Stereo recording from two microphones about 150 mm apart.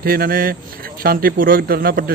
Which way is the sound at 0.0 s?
85° right.